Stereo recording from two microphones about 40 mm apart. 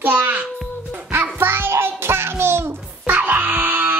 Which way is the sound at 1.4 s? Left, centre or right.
Right.